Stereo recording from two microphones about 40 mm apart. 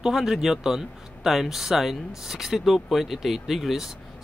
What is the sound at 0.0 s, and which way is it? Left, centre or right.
Speech, centre.